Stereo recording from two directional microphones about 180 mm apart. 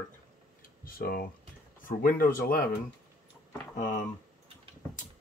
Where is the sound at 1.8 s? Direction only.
50° left (ahead or behind).